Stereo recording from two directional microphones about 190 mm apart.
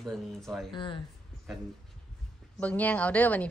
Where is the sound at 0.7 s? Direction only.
25° left (ahead or behind).